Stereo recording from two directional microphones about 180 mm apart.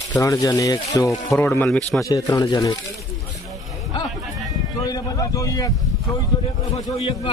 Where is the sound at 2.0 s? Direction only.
20° left (ahead or behind).